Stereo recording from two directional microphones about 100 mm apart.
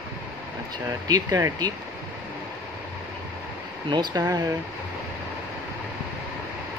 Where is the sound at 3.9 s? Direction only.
45° right (ahead or behind).